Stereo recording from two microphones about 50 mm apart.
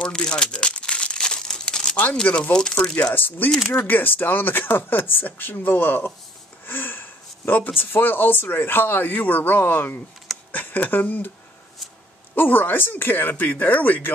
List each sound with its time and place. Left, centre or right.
0.0 s crumpling: centre
2.2 s speech: left
3.2 s speech: left
6.6 s a sound: left
7.8 s speech: left
12.4 s speech: left